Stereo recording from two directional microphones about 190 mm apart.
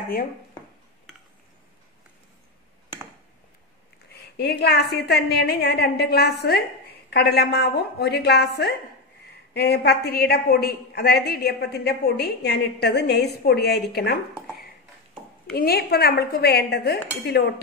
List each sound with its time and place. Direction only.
4.1 s a woman's voice: 60° left (ahead or behind)
15.5 s a woman's voice: 55° left (ahead or behind)